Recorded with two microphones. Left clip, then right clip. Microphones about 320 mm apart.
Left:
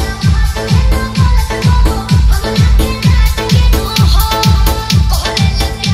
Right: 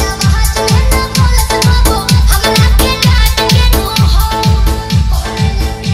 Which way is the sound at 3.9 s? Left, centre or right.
Centre.